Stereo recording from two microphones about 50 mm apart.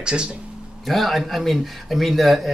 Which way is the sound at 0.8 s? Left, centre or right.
Centre.